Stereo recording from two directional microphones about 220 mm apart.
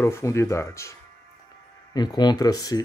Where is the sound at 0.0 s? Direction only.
10° left (ahead or behind).